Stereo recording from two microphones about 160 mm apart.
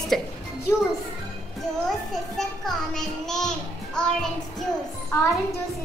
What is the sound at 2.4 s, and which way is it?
A child's voice, 5° left (ahead or behind).